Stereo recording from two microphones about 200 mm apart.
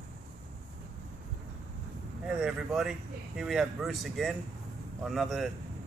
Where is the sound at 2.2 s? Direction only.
5° right (ahead or behind).